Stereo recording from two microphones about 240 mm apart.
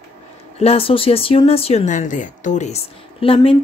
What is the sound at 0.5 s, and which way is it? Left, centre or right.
Speech, left.